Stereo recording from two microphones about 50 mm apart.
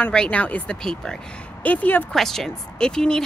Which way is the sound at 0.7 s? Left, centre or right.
Centre.